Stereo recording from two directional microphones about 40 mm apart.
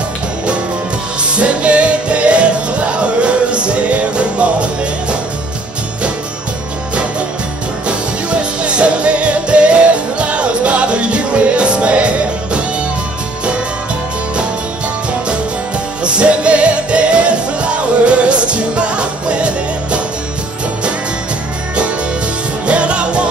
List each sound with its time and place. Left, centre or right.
1.3 s music: right
8.3 s music: right
16.0 s music: right
22.7 s music: right